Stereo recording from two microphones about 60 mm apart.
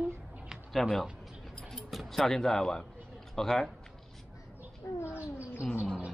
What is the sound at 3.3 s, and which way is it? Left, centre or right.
Speech, centre.